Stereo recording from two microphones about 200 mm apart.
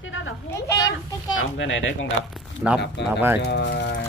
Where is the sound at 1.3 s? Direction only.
75° left (ahead or behind).